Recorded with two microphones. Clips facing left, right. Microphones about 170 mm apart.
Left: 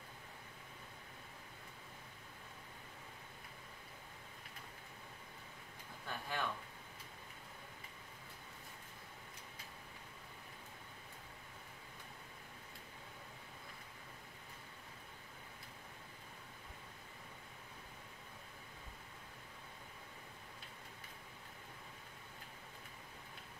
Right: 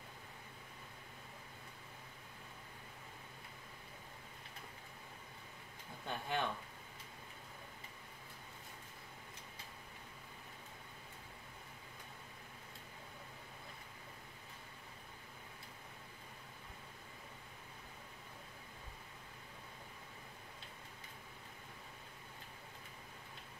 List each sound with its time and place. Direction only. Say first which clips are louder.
6.0 s speech: right 4 dB; 25° right (ahead or behind)